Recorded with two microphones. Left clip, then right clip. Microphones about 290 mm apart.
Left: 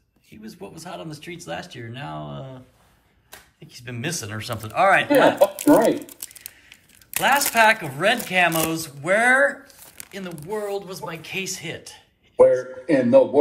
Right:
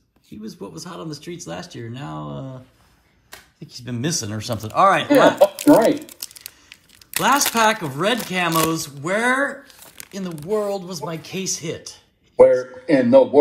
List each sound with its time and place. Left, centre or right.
0.7 s speech: centre
3.6 s speech: centre
6.7 s speech: centre
12.4 s speech: right